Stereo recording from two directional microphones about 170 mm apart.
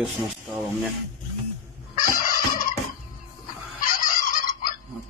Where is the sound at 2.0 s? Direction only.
55° left (ahead or behind).